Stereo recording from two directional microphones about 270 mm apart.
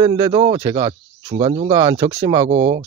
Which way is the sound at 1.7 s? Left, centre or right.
Centre.